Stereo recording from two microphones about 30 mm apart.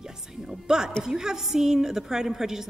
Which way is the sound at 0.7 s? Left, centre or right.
Right.